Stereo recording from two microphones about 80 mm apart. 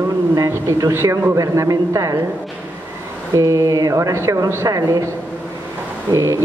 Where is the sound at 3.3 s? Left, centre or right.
Right.